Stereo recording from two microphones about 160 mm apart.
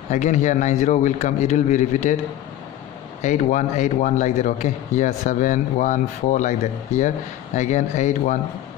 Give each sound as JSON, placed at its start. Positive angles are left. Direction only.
{"t": 0.1, "sound": "a man's voice", "side_deg": 50}
{"t": 3.2, "sound": "a man's voice", "side_deg": 45}
{"t": 7.5, "sound": "a man's voice", "side_deg": 50}